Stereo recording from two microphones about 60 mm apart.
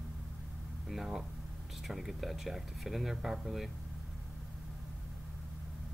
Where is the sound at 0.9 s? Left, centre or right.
Centre.